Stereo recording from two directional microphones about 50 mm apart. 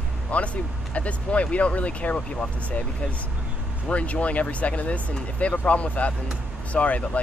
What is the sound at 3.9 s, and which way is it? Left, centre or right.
Speech, left.